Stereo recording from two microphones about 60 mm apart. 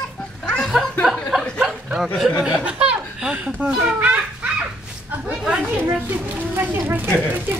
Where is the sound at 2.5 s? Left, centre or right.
Right.